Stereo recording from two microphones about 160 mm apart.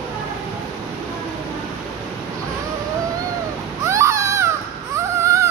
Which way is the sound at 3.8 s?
15° right (ahead or behind).